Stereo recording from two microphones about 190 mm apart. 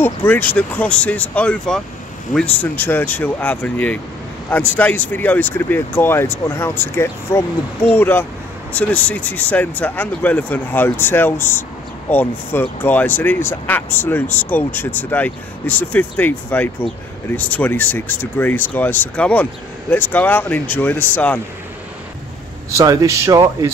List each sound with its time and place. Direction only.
0.0 s speech: 10° left (ahead or behind)
22.7 s speech: 15° right (ahead or behind)